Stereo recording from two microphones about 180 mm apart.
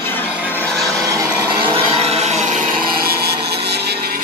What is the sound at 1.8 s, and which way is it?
Wood, 35° right (ahead or behind).